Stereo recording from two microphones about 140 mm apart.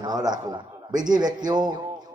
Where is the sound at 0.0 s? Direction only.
30° right (ahead or behind).